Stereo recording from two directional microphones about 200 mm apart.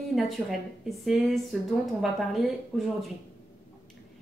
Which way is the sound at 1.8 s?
Centre (ahead or behind).